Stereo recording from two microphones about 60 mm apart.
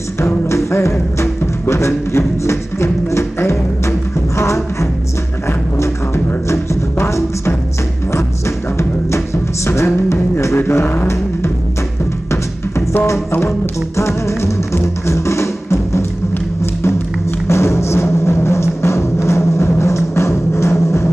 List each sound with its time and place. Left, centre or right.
0.2 s music: left
10.6 s a sound: left
12.3 s music: left
17.5 s music: left